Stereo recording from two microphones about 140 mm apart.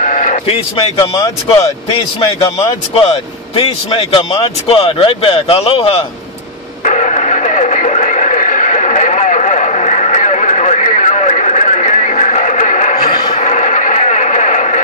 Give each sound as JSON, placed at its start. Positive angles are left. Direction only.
{"t": 0.0, "sound": "a sound", "side_deg": 60}
{"t": 0.5, "sound": "a man's voice", "side_deg": 40}
{"t": 0.9, "sound": "speech", "side_deg": 25}
{"t": 1.6, "sound": "speech", "side_deg": 45}
{"t": 6.8, "sound": "radio", "side_deg": 60}
{"t": 13.3, "sound": "a sound", "side_deg": 60}